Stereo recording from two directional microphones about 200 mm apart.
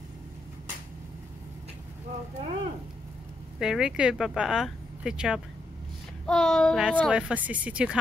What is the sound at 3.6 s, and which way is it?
A child's voice, 5° right (ahead or behind).